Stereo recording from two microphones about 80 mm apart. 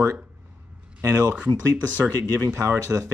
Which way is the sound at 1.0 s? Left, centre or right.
Right.